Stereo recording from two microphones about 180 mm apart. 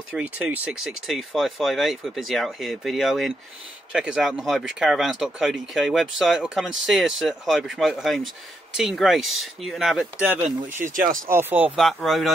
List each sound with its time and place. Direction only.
0.1 s speech: 10° right (ahead or behind)
10.8 s speech: 45° right (ahead or behind)
11.2 s speech: 10° right (ahead or behind)